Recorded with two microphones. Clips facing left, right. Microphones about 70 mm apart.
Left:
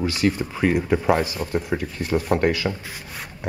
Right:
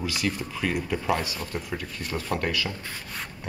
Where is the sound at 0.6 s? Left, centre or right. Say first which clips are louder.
Left 8 dB; left.